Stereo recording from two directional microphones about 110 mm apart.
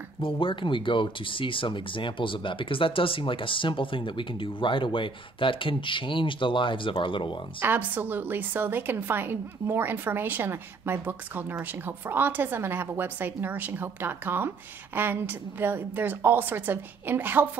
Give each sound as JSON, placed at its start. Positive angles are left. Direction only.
{"t": 0.2, "sound": "speech", "side_deg": 55}
{"t": 7.6, "sound": "a woman's voice", "side_deg": -15}